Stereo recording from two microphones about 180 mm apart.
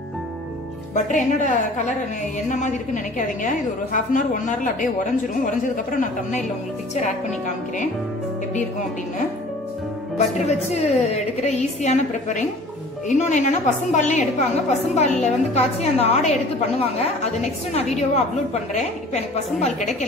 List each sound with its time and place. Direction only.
0.9 s a woman's voice: 45° left (ahead or behind)
10.1 s a woman's voice: 35° left (ahead or behind)